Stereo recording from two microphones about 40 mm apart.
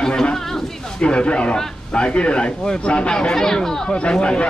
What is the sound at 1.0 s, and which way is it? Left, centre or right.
Speech, left.